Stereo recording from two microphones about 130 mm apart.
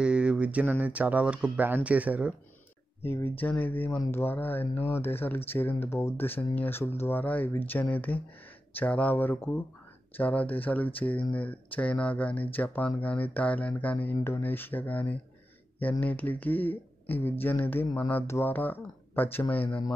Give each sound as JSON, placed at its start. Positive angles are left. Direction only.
{"t": 0.0, "sound": "speech", "side_deg": -10}
{"t": 3.0, "sound": "speech", "side_deg": 15}